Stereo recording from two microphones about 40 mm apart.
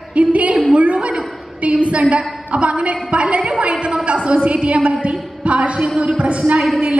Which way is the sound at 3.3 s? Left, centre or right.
Right.